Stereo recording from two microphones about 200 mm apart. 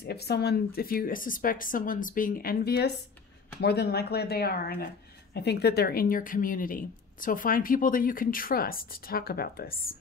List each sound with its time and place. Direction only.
0.0 s a woman's voice: 55° left (ahead or behind)